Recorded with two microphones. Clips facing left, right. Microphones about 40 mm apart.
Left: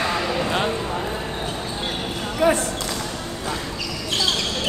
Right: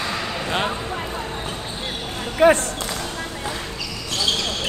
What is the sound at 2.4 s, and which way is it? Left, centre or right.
Speech, right.